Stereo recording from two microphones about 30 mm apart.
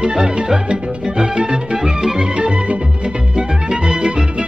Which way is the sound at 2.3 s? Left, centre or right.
Right.